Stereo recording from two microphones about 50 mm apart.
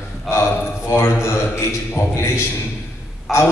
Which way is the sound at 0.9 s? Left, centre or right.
Left.